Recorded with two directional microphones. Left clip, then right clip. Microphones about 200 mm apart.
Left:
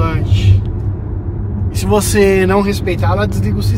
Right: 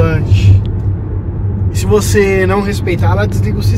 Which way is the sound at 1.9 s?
55° left (ahead or behind).